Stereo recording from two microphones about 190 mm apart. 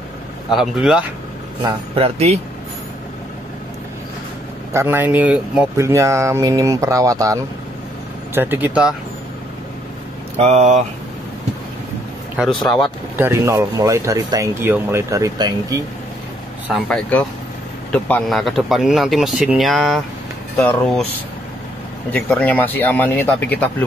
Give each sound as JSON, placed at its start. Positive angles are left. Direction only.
{"t": 0.5, "sound": "speech", "side_deg": 0}
{"t": 1.6, "sound": "speech", "side_deg": -30}
{"t": 4.7, "sound": "speech", "side_deg": -10}
{"t": 8.4, "sound": "speech", "side_deg": -10}
{"t": 10.3, "sound": "speech", "side_deg": -35}
{"t": 12.4, "sound": "speech", "side_deg": 0}
{"t": 13.2, "sound": "speech", "side_deg": -15}
{"t": 16.6, "sound": "speech", "side_deg": 0}
{"t": 22.1, "sound": "speech", "side_deg": 10}